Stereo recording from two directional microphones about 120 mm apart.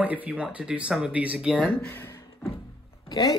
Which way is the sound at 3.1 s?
30° left (ahead or behind).